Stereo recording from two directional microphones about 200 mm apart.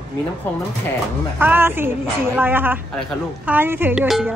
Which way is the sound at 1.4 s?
10° right (ahead or behind).